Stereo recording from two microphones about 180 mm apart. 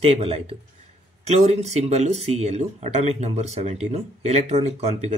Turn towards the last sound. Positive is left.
turn(degrees=-35)  # may be behind; listen again after turning